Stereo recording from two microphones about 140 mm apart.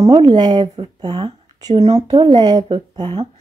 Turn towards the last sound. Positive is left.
turn(degrees=-40)  # may be behind; listen again after turning